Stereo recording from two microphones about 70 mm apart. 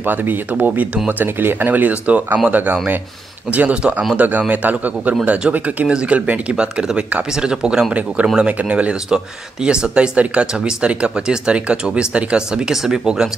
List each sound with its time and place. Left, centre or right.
0.0 s speech: right; by 13.3 s centre